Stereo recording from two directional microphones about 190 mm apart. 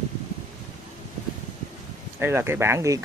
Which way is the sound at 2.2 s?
10° right (ahead or behind).